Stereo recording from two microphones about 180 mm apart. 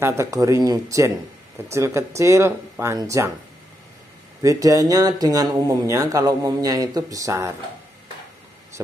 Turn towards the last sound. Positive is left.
turn(degrees=-20)  # may be behind; listen again after turning